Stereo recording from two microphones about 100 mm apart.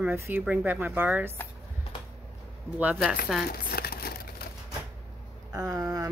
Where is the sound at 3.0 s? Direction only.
5° right (ahead or behind).